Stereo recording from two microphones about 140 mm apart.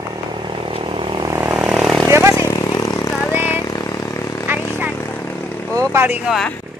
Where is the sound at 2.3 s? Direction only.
25° left (ahead or behind).